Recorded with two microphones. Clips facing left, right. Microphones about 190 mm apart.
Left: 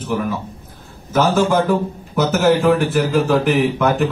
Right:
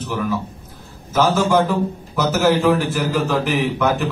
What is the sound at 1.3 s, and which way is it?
A man's voice, 55° left (ahead or behind).